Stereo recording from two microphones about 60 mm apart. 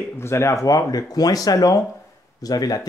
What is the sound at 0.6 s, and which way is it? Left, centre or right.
Speech, left.